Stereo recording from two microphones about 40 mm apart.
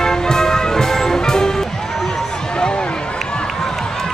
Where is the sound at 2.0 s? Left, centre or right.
Centre.